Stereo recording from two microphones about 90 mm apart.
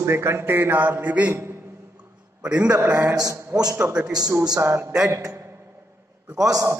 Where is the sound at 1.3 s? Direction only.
30° right (ahead or behind).